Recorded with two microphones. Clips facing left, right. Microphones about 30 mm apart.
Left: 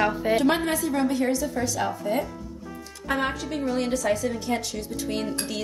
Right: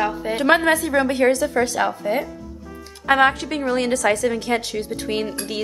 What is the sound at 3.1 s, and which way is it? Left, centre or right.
A woman's voice, right.